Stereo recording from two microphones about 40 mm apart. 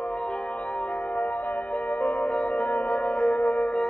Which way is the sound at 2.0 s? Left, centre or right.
Left.